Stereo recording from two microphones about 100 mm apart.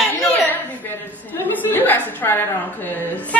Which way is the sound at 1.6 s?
20° left (ahead or behind).